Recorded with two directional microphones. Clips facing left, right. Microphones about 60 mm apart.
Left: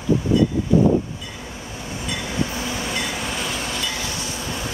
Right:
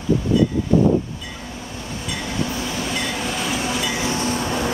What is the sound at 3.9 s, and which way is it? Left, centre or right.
Train, right.